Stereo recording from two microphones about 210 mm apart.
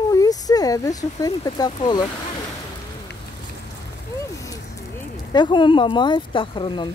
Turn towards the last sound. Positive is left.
turn(degrees=25)  # may be behind; listen again after turning